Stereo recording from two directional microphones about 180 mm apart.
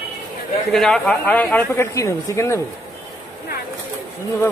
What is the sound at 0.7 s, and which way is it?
Speech, centre (ahead or behind).